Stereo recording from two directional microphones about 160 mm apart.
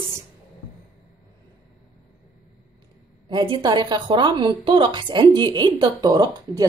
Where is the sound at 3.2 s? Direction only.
30° right (ahead or behind).